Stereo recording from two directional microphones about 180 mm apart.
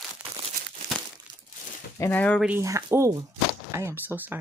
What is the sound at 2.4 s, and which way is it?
Speech, 10° right (ahead or behind).